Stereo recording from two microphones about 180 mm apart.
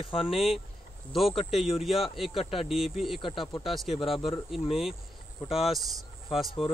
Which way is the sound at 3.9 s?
30° left (ahead or behind).